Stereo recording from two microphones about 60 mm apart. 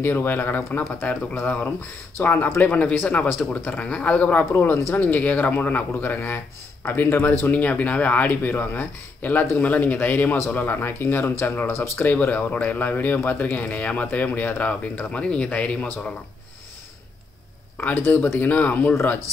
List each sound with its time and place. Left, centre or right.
0.0 s speech: left
4.7 s speech: left
5.0 s speech: left
7.4 s speech: left
11.7 s speech: left
12.1 s speech: left
18.3 s speech: left